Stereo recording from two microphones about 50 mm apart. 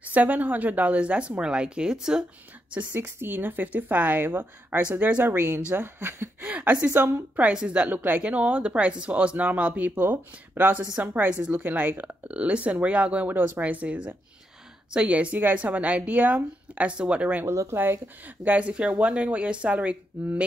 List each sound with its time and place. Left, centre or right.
0.0 s speech: right; by 2.2 s centre
2.9 s speech: right
6.4 s speech: right
6.9 s a woman's voice: right
7.5 s speech: right
7.9 s speech: right
9.9 s speech: right
11.1 s speech: right
12.3 s speech: right
17.5 s speech: right
17.7 s speech: right